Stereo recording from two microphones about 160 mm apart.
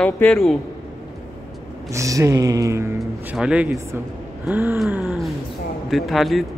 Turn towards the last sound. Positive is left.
turn(degrees=0)  # may be behind; listen again after turning